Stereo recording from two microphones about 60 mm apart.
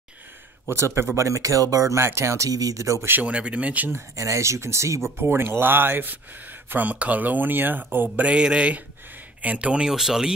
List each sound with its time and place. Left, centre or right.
0.7 s a man's voice: right
1.1 s speech: right
2.0 s speech: right
3.2 s speech: centre
4.1 s speech: right
5.1 s speech: right
8.3 s speech: centre
9.8 s speech: centre